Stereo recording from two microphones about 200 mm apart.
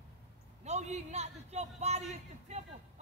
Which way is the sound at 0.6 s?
35° right (ahead or behind).